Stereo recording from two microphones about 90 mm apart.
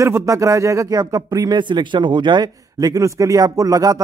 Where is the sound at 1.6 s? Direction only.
60° right (ahead or behind); by 4.0 s 40° right (ahead or behind).